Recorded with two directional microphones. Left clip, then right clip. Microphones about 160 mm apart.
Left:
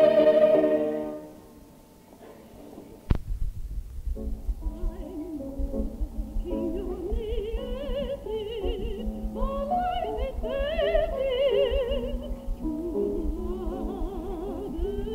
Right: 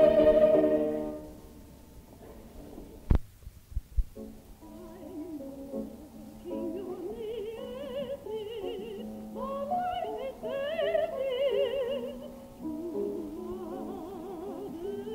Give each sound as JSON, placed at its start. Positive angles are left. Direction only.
{"t": 0.0, "sound": "music", "side_deg": 20}
{"t": 4.2, "sound": "music", "side_deg": 15}
{"t": 6.5, "sound": "music", "side_deg": 20}